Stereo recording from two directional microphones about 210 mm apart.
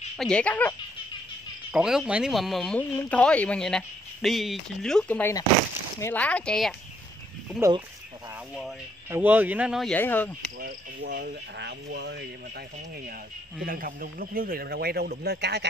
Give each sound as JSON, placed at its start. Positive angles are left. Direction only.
{"t": 0.2, "sound": "speech", "side_deg": 5}
{"t": 9.1, "sound": "speech", "side_deg": -10}
{"t": 10.6, "sound": "a man's voice", "side_deg": -50}
{"t": 13.7, "sound": "a man's voice", "side_deg": -45}